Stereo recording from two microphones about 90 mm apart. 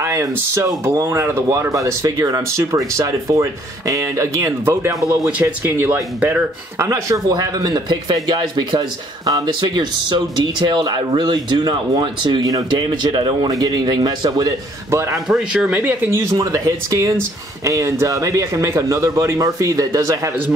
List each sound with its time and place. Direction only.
0.0 s a sound: 35° right (ahead or behind)
0.3 s speech: 30° right (ahead or behind)
6.9 s speech: 40° right (ahead or behind); by 13.5 s 60° right (ahead or behind)
13.5 s speech: 50° right (ahead or behind)
14.9 s speech: 30° right (ahead or behind)
15.2 s speech: 10° right (ahead or behind)
16.1 s speech: 35° right (ahead or behind)